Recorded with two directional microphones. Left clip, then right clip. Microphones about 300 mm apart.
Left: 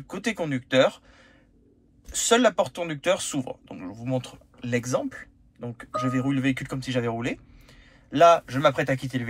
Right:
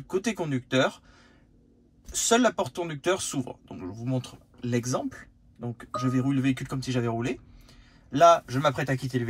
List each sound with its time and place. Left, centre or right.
0.0 s speech: centre